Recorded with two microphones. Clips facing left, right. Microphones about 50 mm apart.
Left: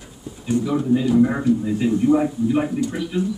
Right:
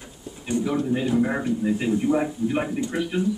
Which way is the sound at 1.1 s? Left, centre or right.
Centre.